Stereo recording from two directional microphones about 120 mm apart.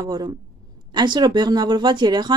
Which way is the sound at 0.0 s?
35° right (ahead or behind).